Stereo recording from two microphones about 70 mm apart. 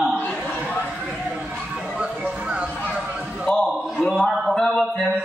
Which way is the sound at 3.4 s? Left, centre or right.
Centre.